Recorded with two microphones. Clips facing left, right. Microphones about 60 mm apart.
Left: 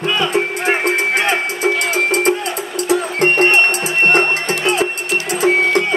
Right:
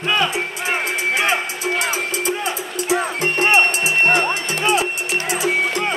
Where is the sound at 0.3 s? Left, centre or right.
Left.